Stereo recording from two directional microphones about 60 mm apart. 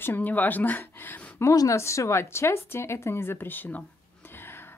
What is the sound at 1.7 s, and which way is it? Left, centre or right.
A woman's voice, left.